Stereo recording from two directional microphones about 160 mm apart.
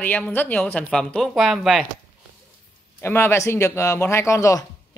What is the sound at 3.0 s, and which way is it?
Speech, 15° left (ahead or behind).